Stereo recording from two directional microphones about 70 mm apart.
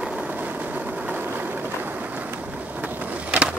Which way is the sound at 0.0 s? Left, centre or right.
Right.